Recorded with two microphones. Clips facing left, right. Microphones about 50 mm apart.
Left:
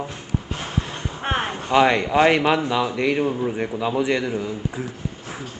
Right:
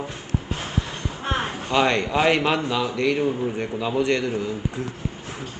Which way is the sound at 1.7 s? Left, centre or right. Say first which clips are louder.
Left 4 dB; centre.